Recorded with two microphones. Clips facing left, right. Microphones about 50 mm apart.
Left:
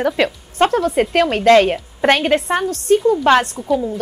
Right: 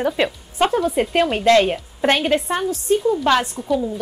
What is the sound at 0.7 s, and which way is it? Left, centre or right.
Speech, left.